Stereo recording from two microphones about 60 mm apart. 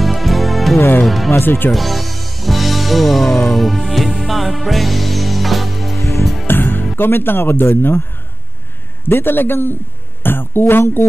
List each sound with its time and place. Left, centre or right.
0.0 s music: centre
0.7 s speech: left
1.0 s speech: centre
1.4 s speech: left
1.7 s music: centre
5.9 s music: left
6.4 s music: left
7.0 s speech: left
9.0 s speech: left